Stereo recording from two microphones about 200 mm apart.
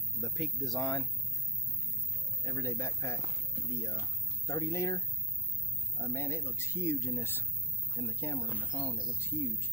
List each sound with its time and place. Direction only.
0.2 s speech: centre (ahead or behind)
2.4 s speech: 15° left (ahead or behind)